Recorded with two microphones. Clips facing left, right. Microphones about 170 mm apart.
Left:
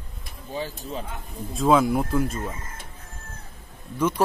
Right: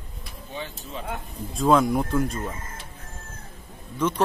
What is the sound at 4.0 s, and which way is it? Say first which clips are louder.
Speech: left 1 dB; 10° left (ahead or behind).